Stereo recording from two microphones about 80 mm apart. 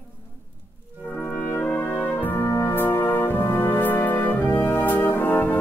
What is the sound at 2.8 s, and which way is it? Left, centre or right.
Music, left.